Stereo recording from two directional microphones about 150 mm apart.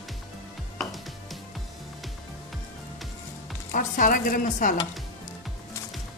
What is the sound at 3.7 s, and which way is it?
Speech, 60° left (ahead or behind).